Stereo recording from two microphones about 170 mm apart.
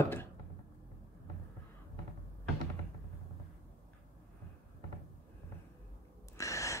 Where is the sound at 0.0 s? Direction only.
15° left (ahead or behind).